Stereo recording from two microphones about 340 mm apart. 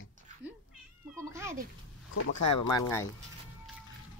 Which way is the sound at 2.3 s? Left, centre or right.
Left.